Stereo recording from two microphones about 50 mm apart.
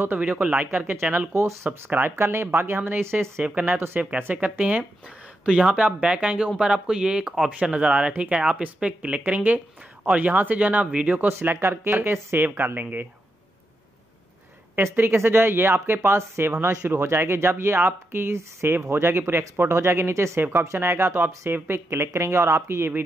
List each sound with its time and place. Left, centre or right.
0.4 s speech: right
0.7 s speech: right
1.3 s speech: right
1.9 s speech: right
3.4 s speech: right
3.7 s speech: right
4.2 s speech: right
5.4 s speech: centre
11.6 s speech: right
12.4 s speech: right
14.8 s speech: right
19.8 s speech: right
20.5 s speech: right